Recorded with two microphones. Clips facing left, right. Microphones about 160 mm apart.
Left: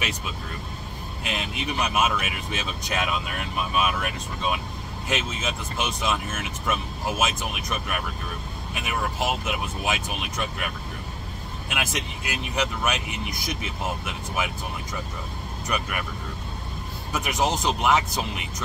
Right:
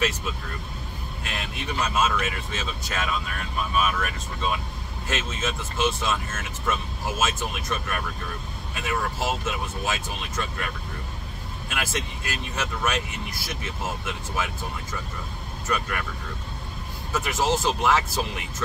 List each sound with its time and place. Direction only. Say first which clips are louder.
1.2 s speech: left 3 dB; 20° left (ahead or behind)
11.7 s speech: even; 15° left (ahead or behind)
17.1 s speech: right 1 dB; 15° left (ahead or behind)